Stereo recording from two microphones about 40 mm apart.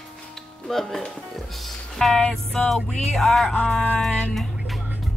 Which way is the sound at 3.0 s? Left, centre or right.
Centre.